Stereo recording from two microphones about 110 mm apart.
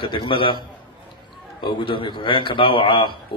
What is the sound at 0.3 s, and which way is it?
Speech, 50° left (ahead or behind).